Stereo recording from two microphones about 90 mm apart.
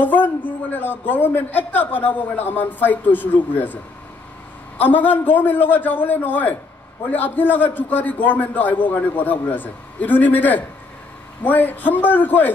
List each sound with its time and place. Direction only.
0.0 s a man's voice: 20° left (ahead or behind)